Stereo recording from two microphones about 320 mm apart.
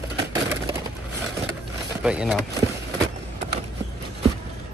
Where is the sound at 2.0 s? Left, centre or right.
Centre.